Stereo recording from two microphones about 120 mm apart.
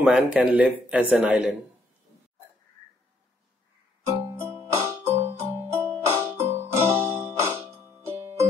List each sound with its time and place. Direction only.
0.0 s a man's voice: 5° right (ahead or behind)
4.0 s keyboard: 20° right (ahead or behind)